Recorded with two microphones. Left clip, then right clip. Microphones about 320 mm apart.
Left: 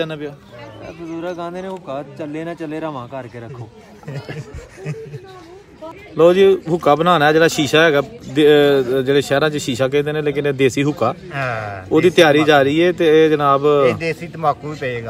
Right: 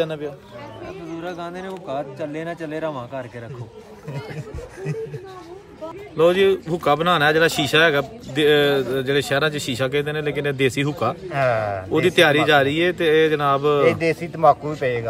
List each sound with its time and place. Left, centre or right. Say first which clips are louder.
0.0 s speech: even; left
1.1 s speech: left 6 dB; centre
6.1 s speech: left 5 dB; centre
11.2 s speech: right 3 dB; right
11.9 s speech: left 5 dB; centre
13.9 s speech: right 1 dB; right